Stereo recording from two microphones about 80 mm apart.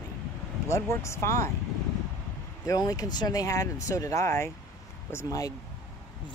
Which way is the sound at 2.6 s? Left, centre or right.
Left.